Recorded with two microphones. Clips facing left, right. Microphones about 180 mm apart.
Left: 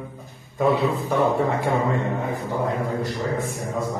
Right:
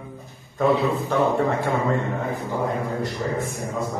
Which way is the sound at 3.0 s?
Centre (ahead or behind).